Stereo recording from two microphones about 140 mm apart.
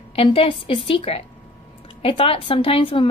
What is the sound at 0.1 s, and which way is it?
A woman's voice, 40° left (ahead or behind).